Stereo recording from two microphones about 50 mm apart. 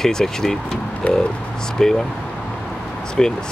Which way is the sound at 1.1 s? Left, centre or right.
Left.